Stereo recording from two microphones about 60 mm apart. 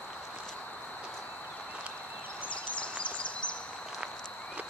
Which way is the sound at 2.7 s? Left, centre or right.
Left.